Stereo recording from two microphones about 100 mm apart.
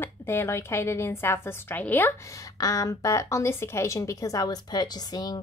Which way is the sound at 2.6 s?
35° left (ahead or behind).